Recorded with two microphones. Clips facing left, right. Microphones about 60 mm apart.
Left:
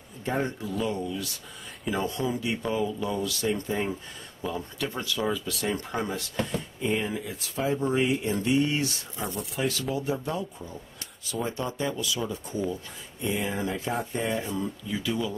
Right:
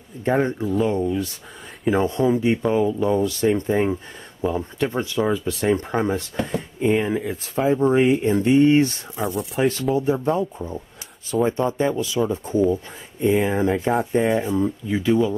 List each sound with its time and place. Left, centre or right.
0.2 s speech: right
9.2 s speech: centre
9.9 s speech: right
14.4 s speech: right
14.9 s speech: right